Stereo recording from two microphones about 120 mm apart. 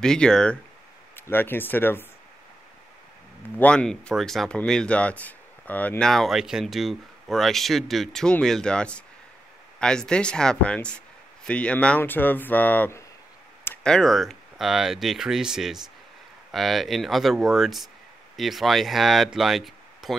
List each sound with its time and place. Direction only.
0.0 s speech: 5° left (ahead or behind)
1.1 s speech: 20° left (ahead or behind)
3.5 s speech: 10° left (ahead or behind)
13.8 s speech: 5° left (ahead or behind)